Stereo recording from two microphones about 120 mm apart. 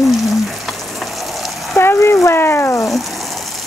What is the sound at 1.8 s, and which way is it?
Speech, 25° left (ahead or behind).